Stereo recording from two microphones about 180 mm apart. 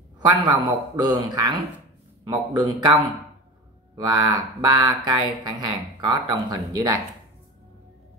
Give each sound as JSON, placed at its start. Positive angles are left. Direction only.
{"t": 0.5, "sound": "speech", "side_deg": -20}